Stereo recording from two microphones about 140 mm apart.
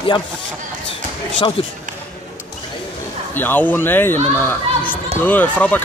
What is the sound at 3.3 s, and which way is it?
Speech, 15° left (ahead or behind).